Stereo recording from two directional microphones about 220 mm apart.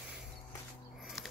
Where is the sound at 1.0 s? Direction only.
Centre (ahead or behind).